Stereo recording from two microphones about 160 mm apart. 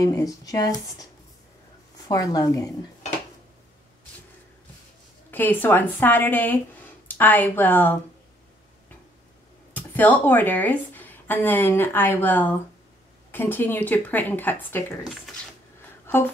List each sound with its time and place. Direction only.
0.0 s speech: 20° left (ahead or behind)
2.0 s speech: 20° left (ahead or behind)
5.3 s speech: 10° left (ahead or behind)
9.8 s a woman's voice: 10° left (ahead or behind)